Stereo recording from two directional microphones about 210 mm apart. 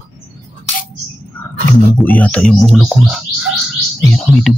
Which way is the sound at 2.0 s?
5° left (ahead or behind).